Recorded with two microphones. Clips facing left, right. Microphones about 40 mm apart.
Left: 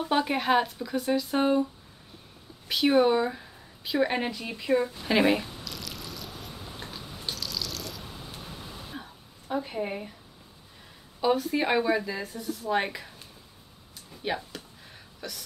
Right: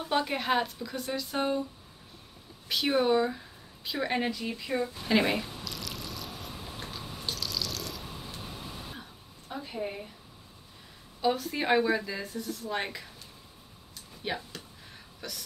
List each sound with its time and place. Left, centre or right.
0.0 s speech: centre
2.7 s speech: centre
4.1 s drip: centre
8.9 s throat clearing: centre
9.6 s speech: left
11.1 s speech: centre
14.2 s speech: centre